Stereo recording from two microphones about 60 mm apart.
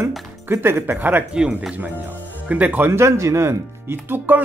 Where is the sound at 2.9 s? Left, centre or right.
Right.